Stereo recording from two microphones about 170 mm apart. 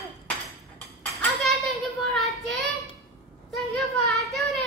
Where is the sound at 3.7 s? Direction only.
Centre (ahead or behind).